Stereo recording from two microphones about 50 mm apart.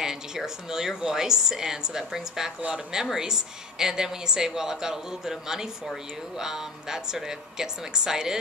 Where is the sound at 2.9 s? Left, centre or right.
Centre.